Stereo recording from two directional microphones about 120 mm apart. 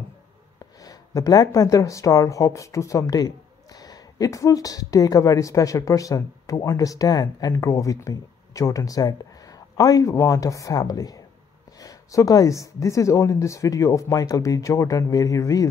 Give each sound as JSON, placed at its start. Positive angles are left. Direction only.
{"t": 0.6, "sound": "speech", "side_deg": 30}